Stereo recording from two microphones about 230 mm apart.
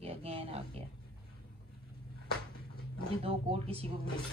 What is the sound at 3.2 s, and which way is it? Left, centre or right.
Speech, right.